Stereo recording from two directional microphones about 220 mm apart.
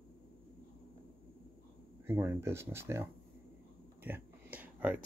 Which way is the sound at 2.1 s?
10° right (ahead or behind).